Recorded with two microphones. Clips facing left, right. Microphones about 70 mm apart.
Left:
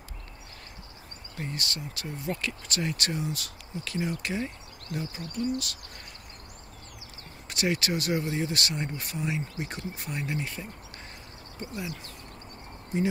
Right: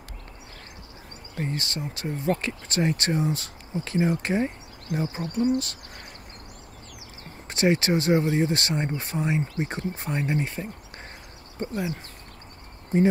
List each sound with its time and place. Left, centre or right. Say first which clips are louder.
1.3 s speech: right 5 dB; right
7.4 s speech: right 6 dB; right